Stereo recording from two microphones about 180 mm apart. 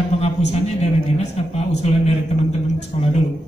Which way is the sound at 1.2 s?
35° left (ahead or behind).